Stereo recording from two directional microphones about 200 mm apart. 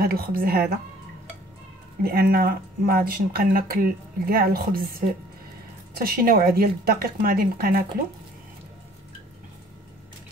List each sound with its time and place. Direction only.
0.0 s speech: 50° right (ahead or behind)
2.0 s speech: 50° right (ahead or behind)